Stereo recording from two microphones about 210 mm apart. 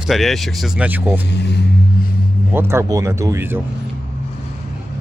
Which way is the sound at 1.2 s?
55° left (ahead or behind).